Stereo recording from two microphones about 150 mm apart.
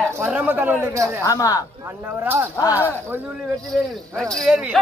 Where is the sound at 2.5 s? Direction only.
15° left (ahead or behind).